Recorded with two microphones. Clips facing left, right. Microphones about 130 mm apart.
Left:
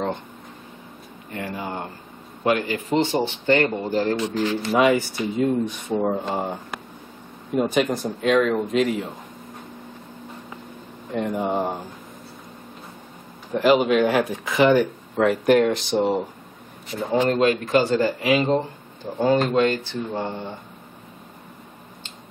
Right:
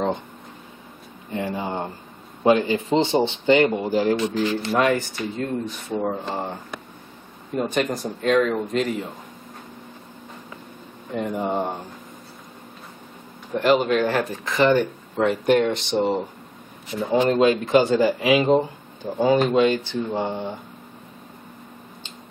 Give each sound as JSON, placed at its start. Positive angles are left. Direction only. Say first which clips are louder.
{"t": 1.3, "sound": "speech", "louder": "right 3 dB", "side_deg": -20}
{"t": 3.6, "sound": "speech", "louder": "right 2 dB", "side_deg": -10}
{"t": 11.1, "sound": "speech", "louder": "left 1 dB", "side_deg": 0}
{"t": 13.5, "sound": "speech", "louder": "left 1 dB", "side_deg": 0}
{"t": 17.4, "sound": "speech", "louder": "right 2 dB", "side_deg": -20}